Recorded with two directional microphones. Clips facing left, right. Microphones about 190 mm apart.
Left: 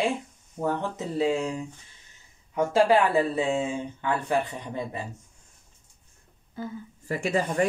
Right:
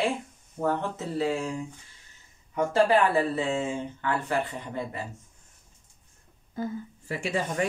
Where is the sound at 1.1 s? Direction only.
15° left (ahead or behind).